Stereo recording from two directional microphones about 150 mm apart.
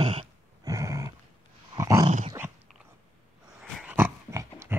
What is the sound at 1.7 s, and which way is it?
Dog, 20° right (ahead or behind).